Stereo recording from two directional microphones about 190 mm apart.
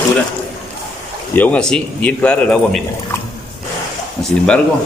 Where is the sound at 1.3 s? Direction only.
10° left (ahead or behind).